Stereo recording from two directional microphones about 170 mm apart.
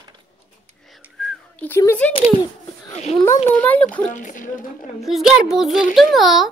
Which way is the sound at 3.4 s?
10° left (ahead or behind).